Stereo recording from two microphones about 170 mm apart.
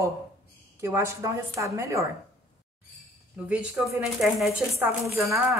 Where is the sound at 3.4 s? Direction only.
5° right (ahead or behind).